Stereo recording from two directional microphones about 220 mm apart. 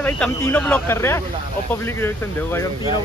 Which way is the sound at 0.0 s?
10° left (ahead or behind).